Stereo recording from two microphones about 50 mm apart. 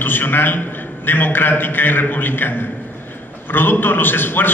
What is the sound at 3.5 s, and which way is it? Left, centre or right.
A man's voice, left.